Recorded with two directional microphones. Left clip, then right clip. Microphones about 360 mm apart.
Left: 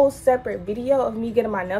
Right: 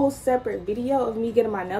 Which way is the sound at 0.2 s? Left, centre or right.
Centre.